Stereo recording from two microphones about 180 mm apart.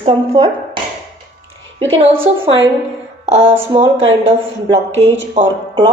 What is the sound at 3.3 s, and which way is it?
Speech, 35° right (ahead or behind).